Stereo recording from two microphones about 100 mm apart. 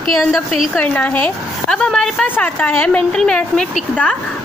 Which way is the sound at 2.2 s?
15° left (ahead or behind).